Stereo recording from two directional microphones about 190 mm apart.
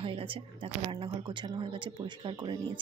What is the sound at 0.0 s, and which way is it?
A woman's voice, 30° right (ahead or behind).